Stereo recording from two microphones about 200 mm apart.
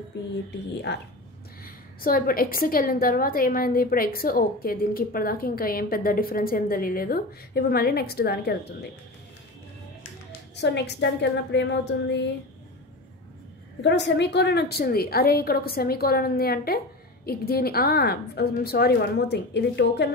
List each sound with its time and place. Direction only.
0.1 s a woman's voice: 55° left (ahead or behind)
1.6 s a woman's voice: 45° left (ahead or behind)
10.5 s a woman's voice: 60° left (ahead or behind)
13.8 s a woman's voice: 60° left (ahead or behind)